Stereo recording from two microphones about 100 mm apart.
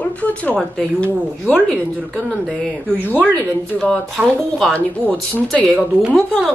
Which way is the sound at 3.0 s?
20° left (ahead or behind).